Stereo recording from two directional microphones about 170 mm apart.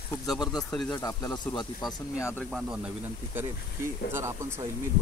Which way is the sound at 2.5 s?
5° right (ahead or behind).